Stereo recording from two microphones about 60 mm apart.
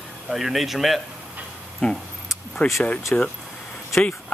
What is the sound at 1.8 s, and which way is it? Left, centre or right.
Speech, centre.